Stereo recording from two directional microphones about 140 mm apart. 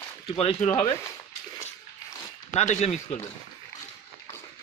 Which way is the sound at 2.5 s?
55° left (ahead or behind).